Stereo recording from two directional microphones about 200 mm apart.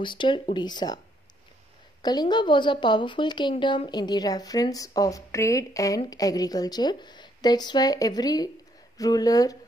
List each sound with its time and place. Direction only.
0.0 s a woman's voice: 25° left (ahead or behind)